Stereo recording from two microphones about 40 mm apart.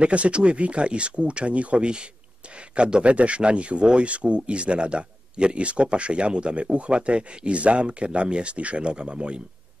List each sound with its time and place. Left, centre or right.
0.0 s speech: right